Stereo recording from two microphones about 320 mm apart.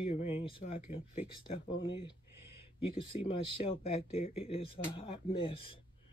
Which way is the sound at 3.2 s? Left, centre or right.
Centre.